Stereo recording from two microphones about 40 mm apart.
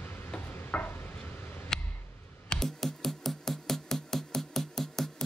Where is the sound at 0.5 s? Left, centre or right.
Left.